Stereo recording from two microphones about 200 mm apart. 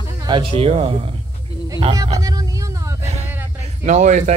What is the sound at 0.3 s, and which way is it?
Speech, 25° right (ahead or behind).